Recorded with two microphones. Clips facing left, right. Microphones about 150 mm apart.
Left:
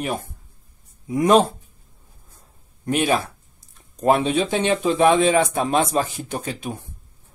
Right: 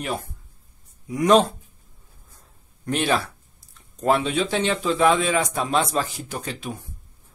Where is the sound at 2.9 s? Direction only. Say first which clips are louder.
Left 2 dB; 10° left (ahead or behind).